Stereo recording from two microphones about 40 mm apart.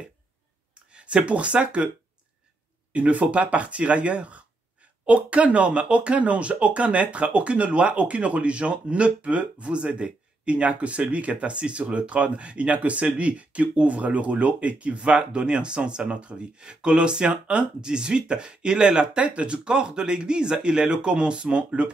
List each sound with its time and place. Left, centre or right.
0.9 s speech: right
2.9 s speech: right